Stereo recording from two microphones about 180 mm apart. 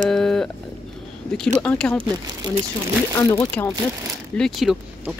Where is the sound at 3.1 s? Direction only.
15° left (ahead or behind).